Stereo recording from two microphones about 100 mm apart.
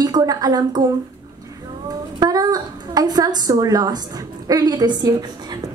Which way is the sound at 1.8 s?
40° right (ahead or behind).